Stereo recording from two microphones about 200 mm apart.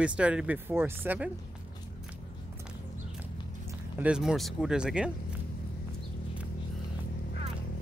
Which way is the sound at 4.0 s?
5° right (ahead or behind).